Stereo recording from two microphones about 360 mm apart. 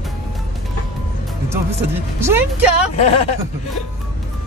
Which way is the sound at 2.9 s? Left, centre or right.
Centre.